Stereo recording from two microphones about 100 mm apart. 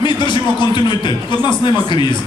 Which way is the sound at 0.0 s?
50° left (ahead or behind).